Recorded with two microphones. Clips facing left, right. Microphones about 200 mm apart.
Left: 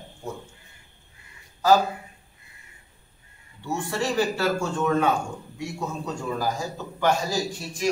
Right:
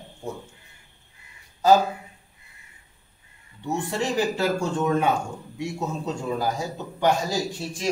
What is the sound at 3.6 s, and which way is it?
A man's voice, 15° right (ahead or behind).